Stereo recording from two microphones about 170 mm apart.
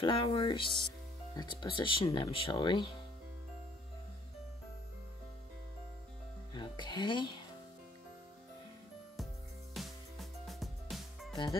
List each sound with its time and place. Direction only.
0.0 s speech: 30° left (ahead or behind)
6.5 s speech: 25° left (ahead or behind)
9.8 s music: centre (ahead or behind)